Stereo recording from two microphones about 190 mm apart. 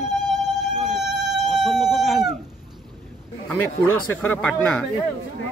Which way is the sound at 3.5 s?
10° left (ahead or behind).